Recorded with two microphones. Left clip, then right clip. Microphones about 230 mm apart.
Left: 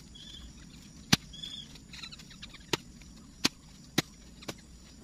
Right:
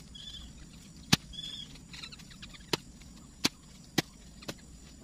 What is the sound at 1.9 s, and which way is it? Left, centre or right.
Rodents, centre.